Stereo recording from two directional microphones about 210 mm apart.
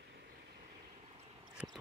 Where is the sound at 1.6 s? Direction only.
5° right (ahead or behind).